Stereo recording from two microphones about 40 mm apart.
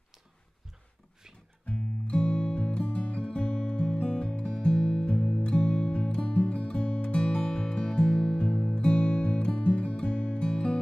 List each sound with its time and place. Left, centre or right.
1.7 s music: left